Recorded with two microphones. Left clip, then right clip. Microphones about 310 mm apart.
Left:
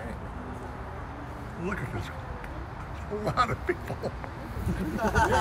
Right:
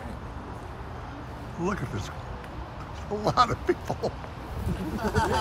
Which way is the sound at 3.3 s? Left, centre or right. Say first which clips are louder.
Right 4 dB; centre.